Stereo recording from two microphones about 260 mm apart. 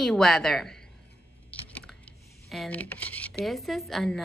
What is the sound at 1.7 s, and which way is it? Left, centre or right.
Computer keyboard, centre.